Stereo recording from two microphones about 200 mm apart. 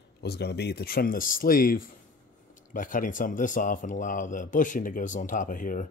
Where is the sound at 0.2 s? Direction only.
55° left (ahead or behind).